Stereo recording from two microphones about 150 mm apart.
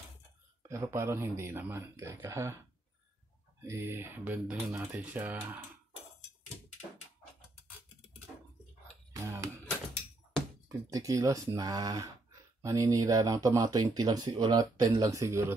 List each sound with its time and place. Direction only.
0.7 s speech: 20° right (ahead or behind)
3.6 s speech: 15° right (ahead or behind)
9.1 s music: 20° right (ahead or behind)
10.7 s speech: 20° right (ahead or behind)